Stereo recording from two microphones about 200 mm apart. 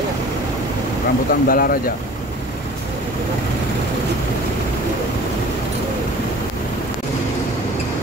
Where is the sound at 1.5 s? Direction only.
45° left (ahead or behind).